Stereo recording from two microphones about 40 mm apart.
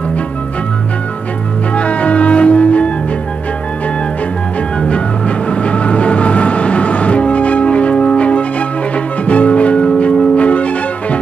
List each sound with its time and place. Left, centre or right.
1.8 s music: left
4.7 s music: left
5.5 s train: left